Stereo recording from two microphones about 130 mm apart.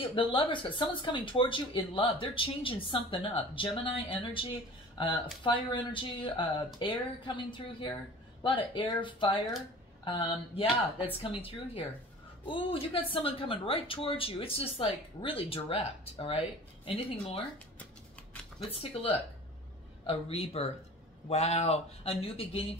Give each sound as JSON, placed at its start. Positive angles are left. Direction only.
{"t": 0.1, "sound": "speech", "side_deg": 40}
{"t": 18.6, "sound": "speech", "side_deg": 50}